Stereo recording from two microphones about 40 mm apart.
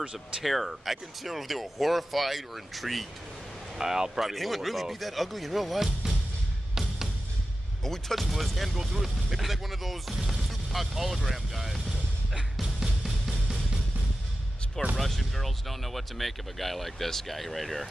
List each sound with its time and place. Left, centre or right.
0.0 s speech: right
0.4 s speech: centre
3.7 s speech: centre
6.7 s music: centre
7.8 s speech: centre
8.2 s speech: centre
12.8 s music: centre
15.0 s speech: centre